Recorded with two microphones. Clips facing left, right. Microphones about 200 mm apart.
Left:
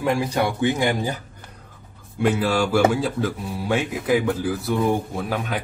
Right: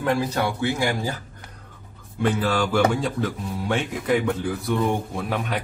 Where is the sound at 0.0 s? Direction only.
10° left (ahead or behind).